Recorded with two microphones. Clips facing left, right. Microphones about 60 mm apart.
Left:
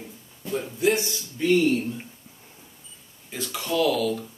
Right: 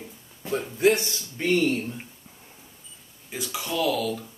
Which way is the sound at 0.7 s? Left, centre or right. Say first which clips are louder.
Right 2 dB; right.